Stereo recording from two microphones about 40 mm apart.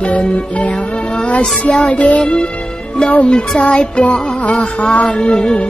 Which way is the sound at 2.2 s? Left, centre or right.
Left.